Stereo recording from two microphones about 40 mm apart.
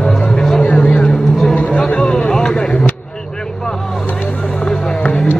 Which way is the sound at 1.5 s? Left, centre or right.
Left.